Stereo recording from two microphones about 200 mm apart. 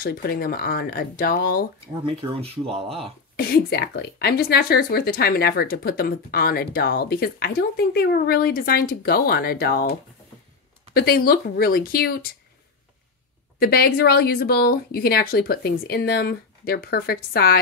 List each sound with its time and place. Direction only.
0.0 s a woman's voice: 50° left (ahead or behind)
2.3 s speech: 30° right (ahead or behind)
3.3 s a woman's voice: 50° left (ahead or behind)
13.6 s a woman's voice: 50° left (ahead or behind)